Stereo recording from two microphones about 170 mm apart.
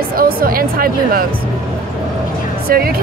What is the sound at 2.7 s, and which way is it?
Speech, 60° right (ahead or behind).